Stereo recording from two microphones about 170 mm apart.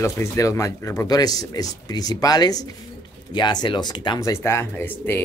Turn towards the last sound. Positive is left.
turn(degrees=10)  # may be behind; listen again after turning